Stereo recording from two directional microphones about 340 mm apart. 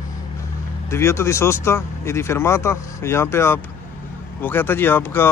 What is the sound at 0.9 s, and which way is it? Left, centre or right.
Speech, centre.